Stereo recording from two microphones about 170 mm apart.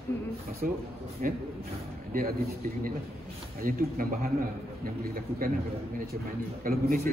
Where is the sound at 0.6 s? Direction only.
50° right (ahead or behind).